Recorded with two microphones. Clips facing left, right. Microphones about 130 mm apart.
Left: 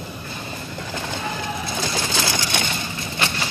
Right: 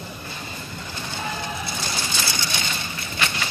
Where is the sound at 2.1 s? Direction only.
70° left (ahead or behind).